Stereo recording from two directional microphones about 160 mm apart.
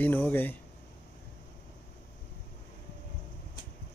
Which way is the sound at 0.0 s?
10° left (ahead or behind).